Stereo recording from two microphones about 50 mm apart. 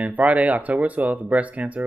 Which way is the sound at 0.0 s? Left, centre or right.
Right.